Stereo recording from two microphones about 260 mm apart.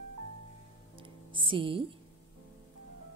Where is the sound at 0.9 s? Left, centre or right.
Centre.